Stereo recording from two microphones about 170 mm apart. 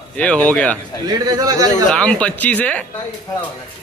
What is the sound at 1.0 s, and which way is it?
Speech, 20° right (ahead or behind).